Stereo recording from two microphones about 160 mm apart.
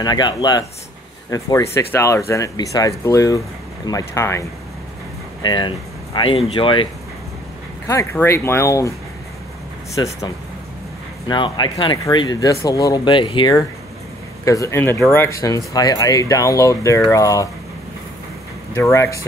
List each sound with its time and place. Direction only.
0.0 s speech: 25° left (ahead or behind)
5.4 s speech: 30° left (ahead or behind)
7.8 s speech: 20° left (ahead or behind)
9.9 s speech: 20° left (ahead or behind)
18.8 s speech: 15° left (ahead or behind)